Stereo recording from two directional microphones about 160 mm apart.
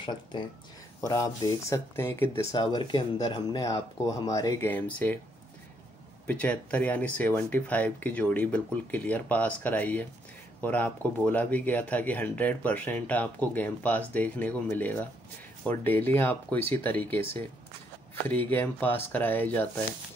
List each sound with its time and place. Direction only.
1.0 s speech: 20° left (ahead or behind)
2.5 s speech: 25° left (ahead or behind); by 5.2 s 10° left (ahead or behind)
6.2 s speech: 10° left (ahead or behind)